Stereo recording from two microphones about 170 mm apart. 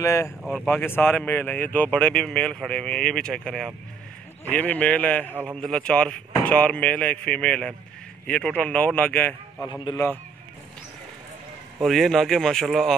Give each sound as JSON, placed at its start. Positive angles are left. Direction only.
{"t": 0.0, "sound": "a man's voice", "side_deg": 15}
{"t": 0.4, "sound": "speech", "side_deg": -5}
{"t": 0.7, "sound": "a man's voice", "side_deg": 10}
{"t": 5.3, "sound": "a man's voice", "side_deg": -10}
{"t": 5.6, "sound": "a man's voice", "side_deg": 5}
{"t": 11.8, "sound": "speech", "side_deg": 0}